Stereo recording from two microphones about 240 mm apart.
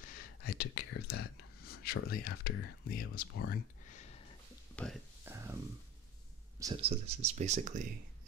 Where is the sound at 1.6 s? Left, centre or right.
Left.